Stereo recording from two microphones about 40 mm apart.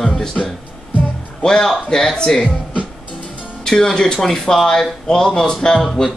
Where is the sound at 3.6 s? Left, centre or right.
Centre.